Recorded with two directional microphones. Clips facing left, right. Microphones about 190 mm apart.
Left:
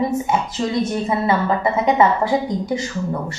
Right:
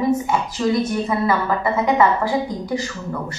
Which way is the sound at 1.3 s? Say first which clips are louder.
Left 1 dB; 25° left (ahead or behind).